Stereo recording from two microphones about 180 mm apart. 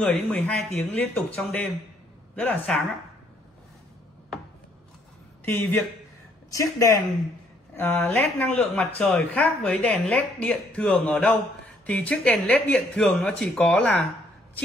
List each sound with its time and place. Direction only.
0.3 s speech: 10° left (ahead or behind)
5.4 s speech: 10° left (ahead or behind)